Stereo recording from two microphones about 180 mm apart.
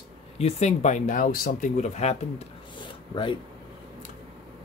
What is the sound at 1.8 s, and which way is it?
Speech, 40° left (ahead or behind).